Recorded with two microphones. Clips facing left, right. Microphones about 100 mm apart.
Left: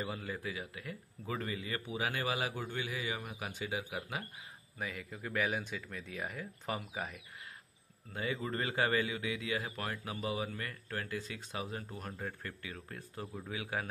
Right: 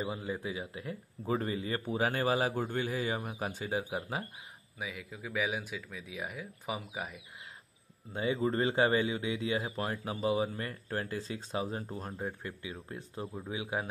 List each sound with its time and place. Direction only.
0.0 s a man's voice: 20° right (ahead or behind)
4.7 s speech: 5° right (ahead or behind)
8.1 s a man's voice: 25° right (ahead or behind)
12.3 s a man's voice: 15° right (ahead or behind)